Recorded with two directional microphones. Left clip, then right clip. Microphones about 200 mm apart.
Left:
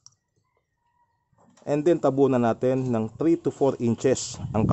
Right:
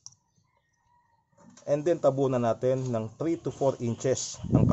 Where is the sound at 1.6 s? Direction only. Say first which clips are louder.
Left 3 dB; 55° left (ahead or behind).